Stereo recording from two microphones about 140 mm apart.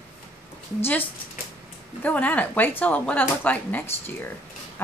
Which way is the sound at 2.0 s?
10° left (ahead or behind).